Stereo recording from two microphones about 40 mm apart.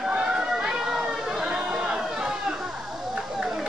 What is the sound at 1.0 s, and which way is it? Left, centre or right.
Chatter, right.